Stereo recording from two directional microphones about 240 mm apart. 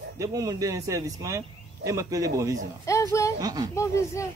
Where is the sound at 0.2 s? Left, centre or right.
Centre.